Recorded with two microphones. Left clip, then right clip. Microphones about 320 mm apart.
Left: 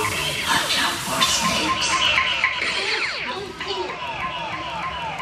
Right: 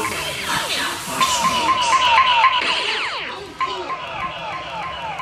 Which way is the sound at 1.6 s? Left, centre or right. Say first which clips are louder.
Right 4 dB; right.